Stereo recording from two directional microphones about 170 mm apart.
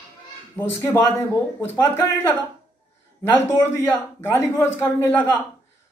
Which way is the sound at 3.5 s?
15° left (ahead or behind).